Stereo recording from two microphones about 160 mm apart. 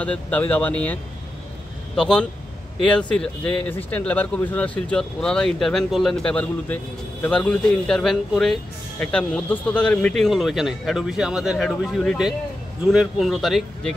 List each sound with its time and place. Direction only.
0.0 s speech: 10° left (ahead or behind)
2.0 s speech: 5° left (ahead or behind)